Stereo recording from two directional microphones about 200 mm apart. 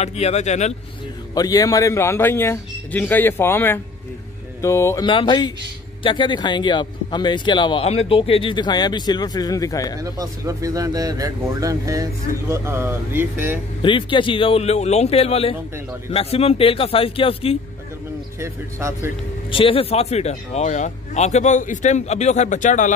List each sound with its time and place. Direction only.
0.0 s speech: 35° left (ahead or behind)
1.3 s a man's voice: 20° left (ahead or behind)
9.9 s speech: 20° right (ahead or behind)
13.8 s a man's voice: 25° left (ahead or behind)
18.4 s speech: 15° right (ahead or behind)
19.5 s speech: 25° left (ahead or behind)